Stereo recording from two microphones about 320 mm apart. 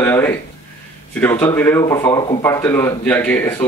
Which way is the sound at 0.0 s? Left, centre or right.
Centre.